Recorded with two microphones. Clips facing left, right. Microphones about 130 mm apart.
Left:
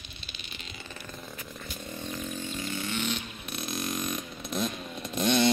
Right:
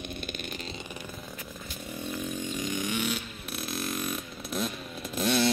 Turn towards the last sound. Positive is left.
turn(degrees=-5)  # may be behind; listen again after turning